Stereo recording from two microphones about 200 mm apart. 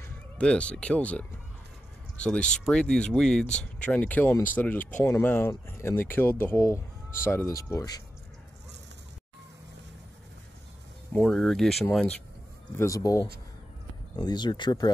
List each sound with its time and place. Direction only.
0.0 s speech: 5° left (ahead or behind)
11.1 s speech: 5° left (ahead or behind)
12.7 s speech: 15° left (ahead or behind)